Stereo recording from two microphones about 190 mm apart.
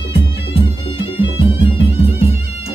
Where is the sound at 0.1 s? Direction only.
30° left (ahead or behind).